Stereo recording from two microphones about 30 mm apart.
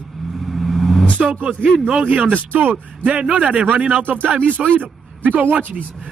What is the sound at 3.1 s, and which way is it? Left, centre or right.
Speech, right.